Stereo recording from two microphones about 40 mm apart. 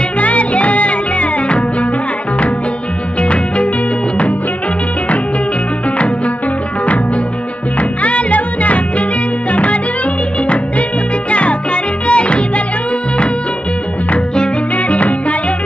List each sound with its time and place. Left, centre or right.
0.2 s music: left
3.2 s music: left
5.9 s music: left
8.0 s music: left
11.2 s music: left
14.9 s music: left